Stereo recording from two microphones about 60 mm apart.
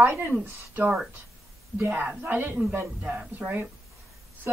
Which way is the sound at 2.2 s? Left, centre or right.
Right.